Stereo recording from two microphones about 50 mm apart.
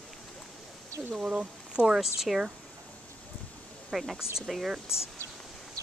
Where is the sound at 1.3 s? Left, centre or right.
Right.